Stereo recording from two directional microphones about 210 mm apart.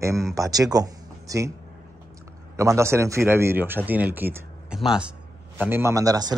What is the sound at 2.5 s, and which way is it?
Speech, 15° right (ahead or behind).